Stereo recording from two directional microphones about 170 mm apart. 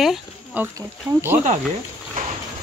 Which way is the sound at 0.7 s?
15° right (ahead or behind).